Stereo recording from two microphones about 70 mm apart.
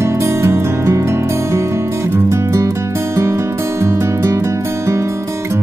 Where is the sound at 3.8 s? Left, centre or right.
Right.